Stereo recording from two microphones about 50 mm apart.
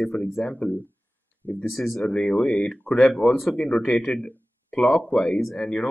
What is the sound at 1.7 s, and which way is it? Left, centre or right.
Speech, centre.